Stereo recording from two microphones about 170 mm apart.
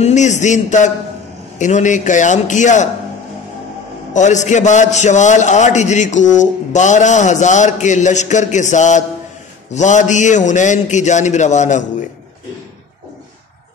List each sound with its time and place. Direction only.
0.0 s a man's voice: 45° left (ahead or behind)
4.1 s a man's voice: 45° left (ahead or behind)